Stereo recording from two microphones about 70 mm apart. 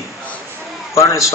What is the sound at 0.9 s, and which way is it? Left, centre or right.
Speech, left.